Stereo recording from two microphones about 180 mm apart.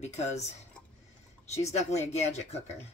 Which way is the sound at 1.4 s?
35° left (ahead or behind).